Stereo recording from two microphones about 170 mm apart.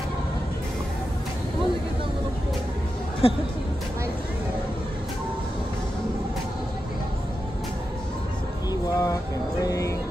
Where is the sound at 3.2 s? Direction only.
35° left (ahead or behind).